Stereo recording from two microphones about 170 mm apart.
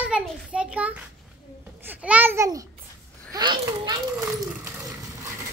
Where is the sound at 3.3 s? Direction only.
25° right (ahead or behind).